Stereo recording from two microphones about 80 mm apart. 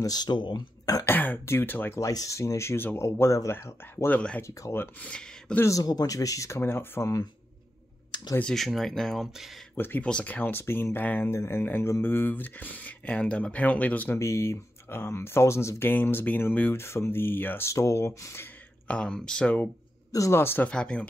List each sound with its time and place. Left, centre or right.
0.0 s speech: left
1.0 s speech: left
2.0 s speech: left
4.4 s speech: left
4.9 s speech: centre
5.6 s speech: left
8.5 s speech: centre
9.8 s speech: left
14.1 s speech: left
17.6 s speech: left
18.9 s speech: centre
20.1 s a man's voice: left
20.3 s speech: left
20.6 s speech: centre